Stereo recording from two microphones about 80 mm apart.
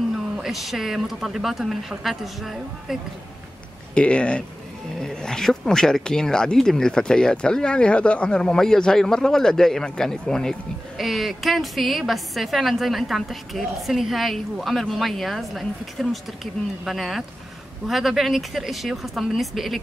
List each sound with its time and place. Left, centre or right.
0.4 s a woman's voice: centre
3.9 s a woman's voice: centre